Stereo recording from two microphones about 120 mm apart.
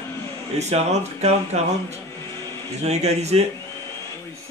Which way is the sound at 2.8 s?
65° right (ahead or behind).